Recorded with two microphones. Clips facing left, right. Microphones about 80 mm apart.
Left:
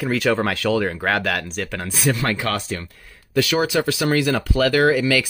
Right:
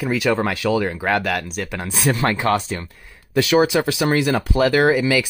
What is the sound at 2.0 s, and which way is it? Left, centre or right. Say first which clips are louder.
Speech: right 3 dB; right.